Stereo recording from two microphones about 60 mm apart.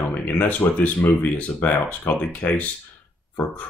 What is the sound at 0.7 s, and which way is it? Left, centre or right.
Speech, left.